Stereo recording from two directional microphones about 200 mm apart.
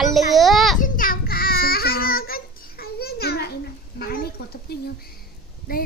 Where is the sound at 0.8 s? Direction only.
45° left (ahead or behind).